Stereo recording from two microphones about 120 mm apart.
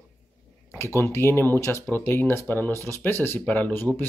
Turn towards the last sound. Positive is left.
turn(degrees=15)  # may be behind; listen again after turning